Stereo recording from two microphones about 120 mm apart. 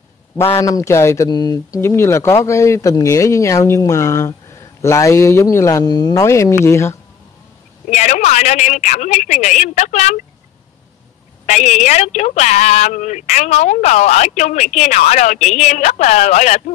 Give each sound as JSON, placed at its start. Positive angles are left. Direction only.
{"t": 0.6, "sound": "speech", "side_deg": 30}
{"t": 7.9, "sound": "speech", "side_deg": 75}
{"t": 11.4, "sound": "speech", "side_deg": 70}